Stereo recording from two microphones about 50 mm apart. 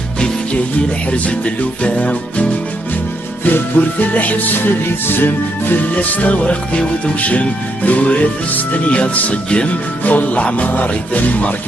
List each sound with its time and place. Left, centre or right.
0.2 s speech: left
3.4 s music: left
7.2 s speech: left
10.0 s music: left